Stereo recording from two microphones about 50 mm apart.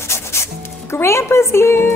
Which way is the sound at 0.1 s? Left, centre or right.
Left.